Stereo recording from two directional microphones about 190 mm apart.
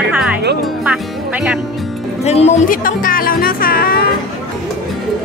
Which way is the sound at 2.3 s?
35° left (ahead or behind).